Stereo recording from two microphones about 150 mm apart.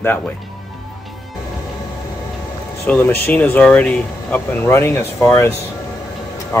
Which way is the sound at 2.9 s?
15° left (ahead or behind).